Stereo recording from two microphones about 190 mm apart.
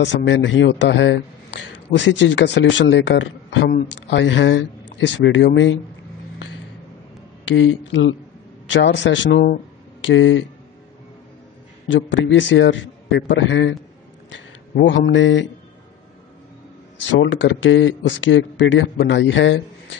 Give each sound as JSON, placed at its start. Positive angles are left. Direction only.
{"t": 0.0, "sound": "speech", "side_deg": 70}
{"t": 7.4, "sound": "speech", "side_deg": 90}
{"t": 8.6, "sound": "speech", "side_deg": 70}
{"t": 11.9, "sound": "speech", "side_deg": 75}
{"t": 14.8, "sound": "speech", "side_deg": 70}
{"t": 17.1, "sound": "speech", "side_deg": 80}